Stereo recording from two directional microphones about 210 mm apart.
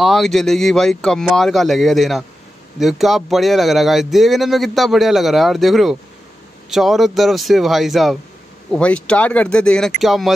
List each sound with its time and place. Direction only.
0.0 s speech: centre (ahead or behind)